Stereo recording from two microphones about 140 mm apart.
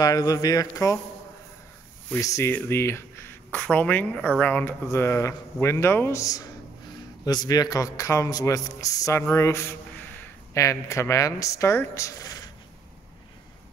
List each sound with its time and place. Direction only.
0.0 s a man's voice: 25° left (ahead or behind)
2.1 s a man's voice: 20° left (ahead or behind)